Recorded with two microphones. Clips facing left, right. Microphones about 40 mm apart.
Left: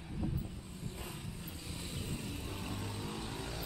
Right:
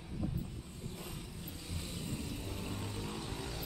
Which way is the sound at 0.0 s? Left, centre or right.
Centre.